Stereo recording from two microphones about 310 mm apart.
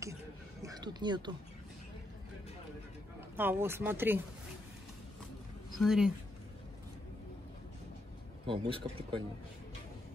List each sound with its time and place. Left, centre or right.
0.0 s a sound: centre
3.3 s speech: centre
5.8 s speech: centre
8.5 s speech: centre